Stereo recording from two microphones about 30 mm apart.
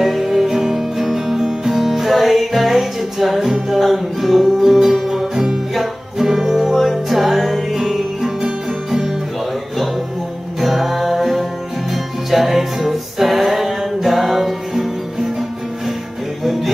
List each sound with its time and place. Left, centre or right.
0.0 s music: centre
8.4 s music: right
10.6 s music: centre